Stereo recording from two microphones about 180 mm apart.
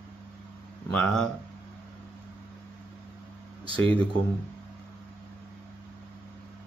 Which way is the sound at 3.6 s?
30° right (ahead or behind).